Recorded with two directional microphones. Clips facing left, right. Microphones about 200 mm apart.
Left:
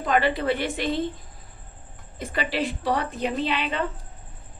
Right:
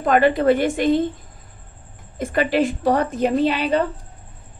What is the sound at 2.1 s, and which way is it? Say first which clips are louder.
A woman's voice: right 8 dB; 50° right (ahead or behind).